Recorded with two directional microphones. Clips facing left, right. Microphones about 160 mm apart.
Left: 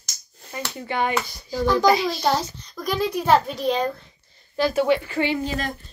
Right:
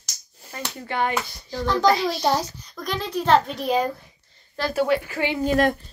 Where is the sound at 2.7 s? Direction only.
5° left (ahead or behind).